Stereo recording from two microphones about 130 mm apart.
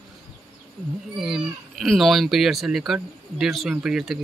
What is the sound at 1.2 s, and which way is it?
Speech, centre (ahead or behind).